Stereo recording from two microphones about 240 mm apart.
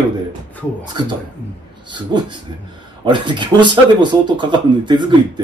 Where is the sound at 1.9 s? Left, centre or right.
Centre.